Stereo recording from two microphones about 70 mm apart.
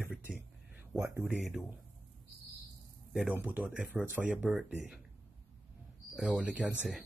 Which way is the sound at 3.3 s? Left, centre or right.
Right.